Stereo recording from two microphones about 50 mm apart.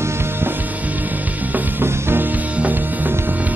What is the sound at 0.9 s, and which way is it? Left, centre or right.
Music, right.